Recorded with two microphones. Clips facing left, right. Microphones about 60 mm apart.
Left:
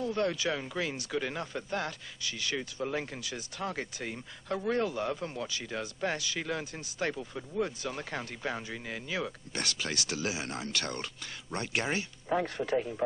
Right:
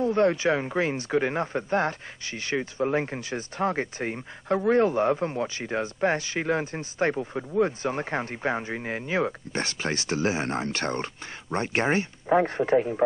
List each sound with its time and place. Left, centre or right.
0.0 s speech: right